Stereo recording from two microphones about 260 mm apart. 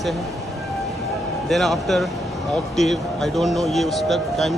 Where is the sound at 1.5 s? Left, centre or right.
Centre.